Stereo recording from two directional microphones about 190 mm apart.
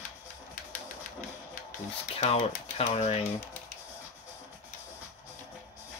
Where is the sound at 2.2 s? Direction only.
35° left (ahead or behind).